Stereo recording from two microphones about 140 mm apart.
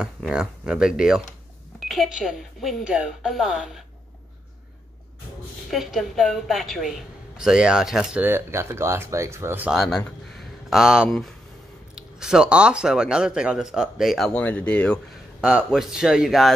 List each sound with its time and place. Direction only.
0.0 s speech: 5° right (ahead or behind)
5.7 s speech: centre (ahead or behind); by 9.7 s 15° right (ahead or behind)
9.7 s speech: centre (ahead or behind)
15.4 s speech: 5° right (ahead or behind)